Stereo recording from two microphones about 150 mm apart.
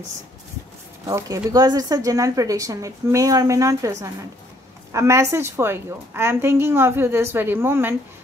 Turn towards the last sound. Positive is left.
turn(degrees=-15)  # may be behind; listen again after turning